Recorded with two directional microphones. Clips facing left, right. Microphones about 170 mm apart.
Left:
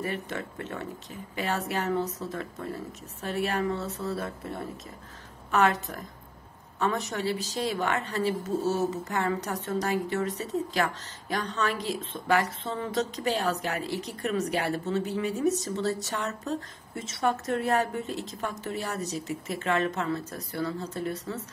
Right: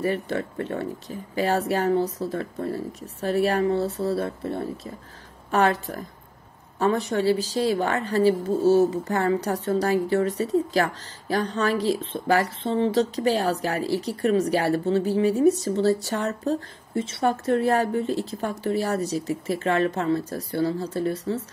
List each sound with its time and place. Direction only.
0.0 s a woman's voice: 35° right (ahead or behind)